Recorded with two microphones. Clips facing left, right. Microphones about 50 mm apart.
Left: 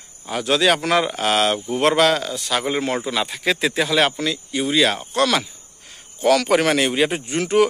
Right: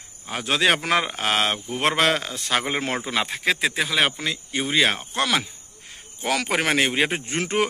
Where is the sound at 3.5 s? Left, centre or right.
Centre.